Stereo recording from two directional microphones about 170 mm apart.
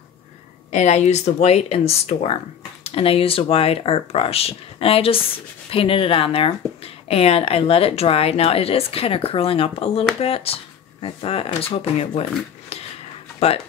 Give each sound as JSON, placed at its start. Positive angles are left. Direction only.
{"t": 0.7, "sound": "speech", "side_deg": 45}